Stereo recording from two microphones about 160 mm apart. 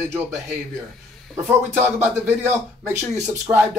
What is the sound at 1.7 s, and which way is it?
Speech, 15° right (ahead or behind).